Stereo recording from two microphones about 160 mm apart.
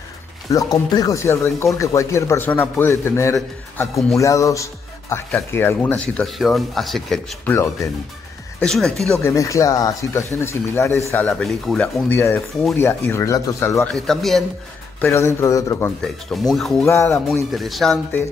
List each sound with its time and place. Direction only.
0.5 s a man's voice: 20° left (ahead or behind); by 7.3 s centre (ahead or behind)
7.4 s a man's voice: 15° left (ahead or behind)
8.5 s speech: 5° left (ahead or behind)
9.2 s speech: 20° left (ahead or behind)
11.2 s a man's voice: 5° left (ahead or behind)
13.9 s speech: 5° left (ahead or behind)
15.0 s speech: 15° left (ahead or behind)
16.0 s speech: 5° left (ahead or behind)
16.8 s speech: 20° left (ahead or behind)
17.6 s speech: centre (ahead or behind)